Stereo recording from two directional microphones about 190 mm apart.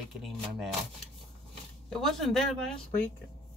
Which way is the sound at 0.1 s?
Centre (ahead or behind).